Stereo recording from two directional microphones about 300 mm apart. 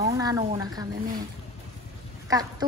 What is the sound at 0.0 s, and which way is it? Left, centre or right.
Speech, centre.